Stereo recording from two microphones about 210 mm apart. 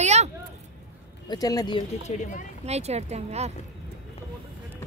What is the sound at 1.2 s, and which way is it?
Speech, 15° left (ahead or behind).